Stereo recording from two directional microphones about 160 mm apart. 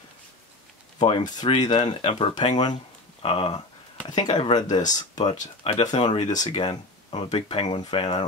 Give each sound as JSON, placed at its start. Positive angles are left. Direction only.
{"t": 0.9, "sound": "speech", "side_deg": 30}
{"t": 2.5, "sound": "speech", "side_deg": 30}
{"t": 4.6, "sound": "speech", "side_deg": 25}
{"t": 5.1, "sound": "speech", "side_deg": 45}
{"t": 6.5, "sound": "speech", "side_deg": 35}